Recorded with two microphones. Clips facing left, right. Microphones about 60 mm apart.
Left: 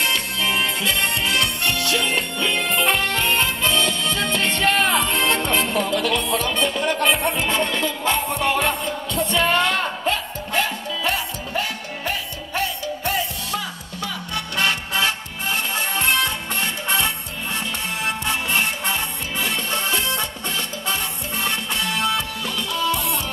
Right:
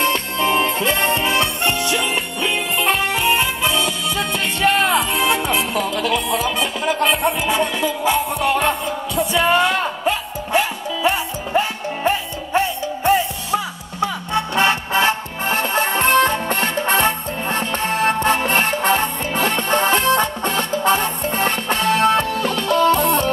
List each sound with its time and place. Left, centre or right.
0.0 s music: right; by 2.6 s centre
2.7 s music: centre; by 23.3 s right